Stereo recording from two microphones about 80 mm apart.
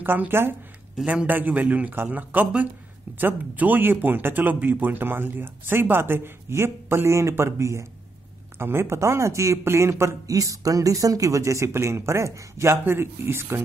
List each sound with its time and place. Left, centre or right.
0.0 s speech: right